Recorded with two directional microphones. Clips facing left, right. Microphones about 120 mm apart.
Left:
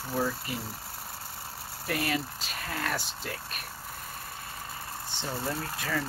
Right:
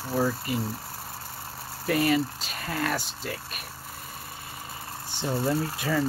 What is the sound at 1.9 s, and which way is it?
Speech, centre (ahead or behind).